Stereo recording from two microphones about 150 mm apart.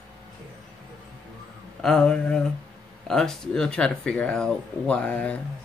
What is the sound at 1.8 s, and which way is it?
Speech, 5° left (ahead or behind).